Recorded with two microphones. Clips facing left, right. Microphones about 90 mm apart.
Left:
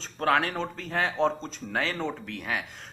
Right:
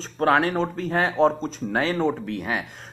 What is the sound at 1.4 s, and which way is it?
Speech, 20° right (ahead or behind).